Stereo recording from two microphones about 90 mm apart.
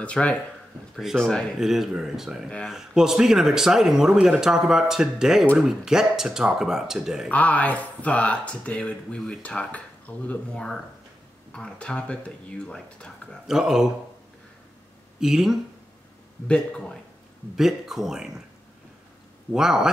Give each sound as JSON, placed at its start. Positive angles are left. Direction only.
{"t": 0.0, "sound": "speech", "side_deg": 15}
{"t": 1.6, "sound": "speech", "side_deg": -5}
{"t": 7.2, "sound": "speech", "side_deg": 15}
{"t": 13.5, "sound": "speech", "side_deg": -5}
{"t": 15.1, "sound": "speech", "side_deg": -5}
{"t": 16.4, "sound": "speech", "side_deg": 10}
{"t": 17.6, "sound": "speech", "side_deg": -5}
{"t": 19.5, "sound": "speech", "side_deg": -5}